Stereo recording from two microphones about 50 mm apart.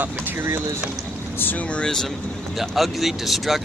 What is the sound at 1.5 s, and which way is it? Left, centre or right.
Speech, left.